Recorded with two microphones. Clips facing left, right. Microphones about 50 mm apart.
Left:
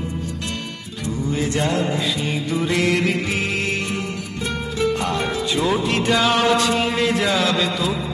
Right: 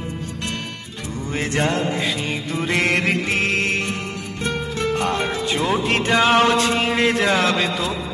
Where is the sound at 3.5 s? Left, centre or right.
Right.